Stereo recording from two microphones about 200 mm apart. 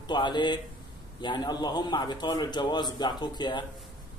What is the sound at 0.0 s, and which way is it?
A man's voice, 20° left (ahead or behind).